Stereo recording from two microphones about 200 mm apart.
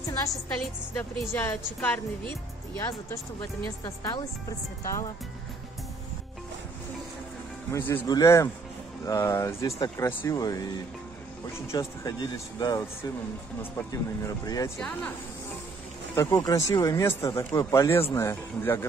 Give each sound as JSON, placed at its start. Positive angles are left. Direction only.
{"t": 0.6, "sound": "speech", "side_deg": 10}
{"t": 7.7, "sound": "speech", "side_deg": 15}
{"t": 16.2, "sound": "speech", "side_deg": 15}